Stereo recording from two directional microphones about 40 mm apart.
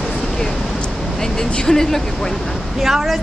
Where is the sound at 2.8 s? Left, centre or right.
Centre.